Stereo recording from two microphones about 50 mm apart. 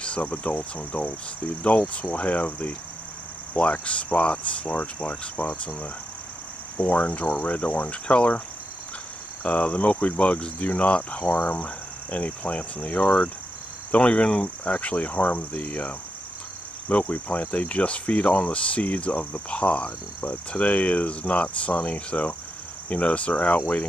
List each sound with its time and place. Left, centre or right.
0.0 s speech: left
6.8 s speech: left
9.4 s speech: left
16.9 s speech: left